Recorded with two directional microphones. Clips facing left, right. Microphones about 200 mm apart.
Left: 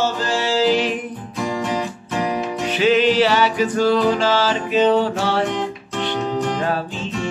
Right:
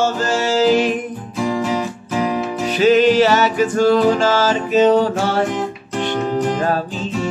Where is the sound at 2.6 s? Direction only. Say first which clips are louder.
Right 4 dB; 40° right (ahead or behind).